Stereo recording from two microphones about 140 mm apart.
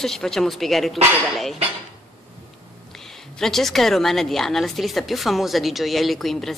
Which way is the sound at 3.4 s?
Centre (ahead or behind).